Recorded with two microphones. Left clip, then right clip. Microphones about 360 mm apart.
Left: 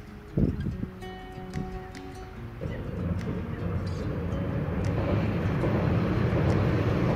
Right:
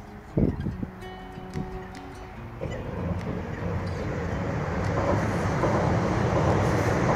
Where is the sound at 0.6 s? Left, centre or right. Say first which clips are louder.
Right 2 dB; centre.